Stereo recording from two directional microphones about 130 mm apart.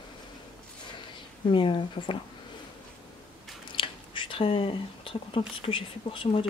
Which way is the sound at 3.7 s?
40° left (ahead or behind).